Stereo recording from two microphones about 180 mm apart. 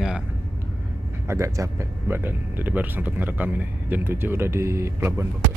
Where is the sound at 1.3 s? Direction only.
15° right (ahead or behind).